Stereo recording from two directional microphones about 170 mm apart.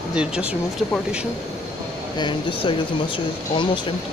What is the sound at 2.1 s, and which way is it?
Speech, 30° left (ahead or behind).